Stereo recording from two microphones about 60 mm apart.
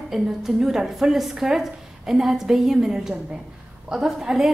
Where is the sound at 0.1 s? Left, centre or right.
Centre.